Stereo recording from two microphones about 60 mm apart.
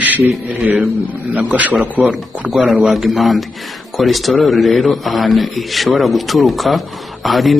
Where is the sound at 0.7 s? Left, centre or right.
Right.